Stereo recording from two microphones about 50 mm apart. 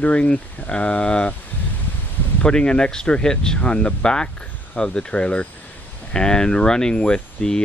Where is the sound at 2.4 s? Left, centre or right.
Centre.